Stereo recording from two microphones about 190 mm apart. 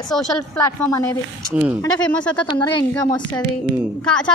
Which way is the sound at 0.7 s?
15° left (ahead or behind).